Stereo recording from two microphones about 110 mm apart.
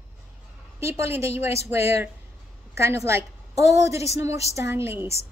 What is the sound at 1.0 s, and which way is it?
A woman's voice, 25° right (ahead or behind).